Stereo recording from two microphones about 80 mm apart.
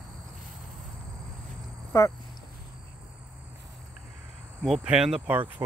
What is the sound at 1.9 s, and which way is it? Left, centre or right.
Speech, left.